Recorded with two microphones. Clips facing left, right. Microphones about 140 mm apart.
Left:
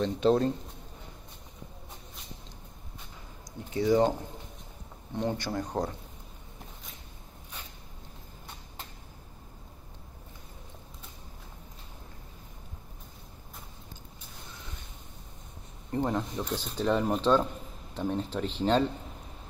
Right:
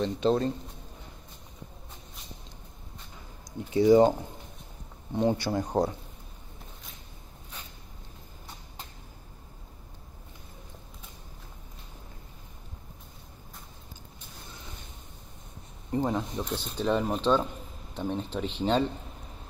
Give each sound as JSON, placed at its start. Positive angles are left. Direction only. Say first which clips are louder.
{"t": 0.0, "sound": "speech", "louder": "left 1 dB", "side_deg": 0}
{"t": 3.7, "sound": "speech", "louder": "right 5 dB", "side_deg": -15}
{"t": 5.1, "sound": "speech", "louder": "right 5 dB", "side_deg": -10}
{"t": 15.9, "sound": "speech", "louder": "right 1 dB", "side_deg": -5}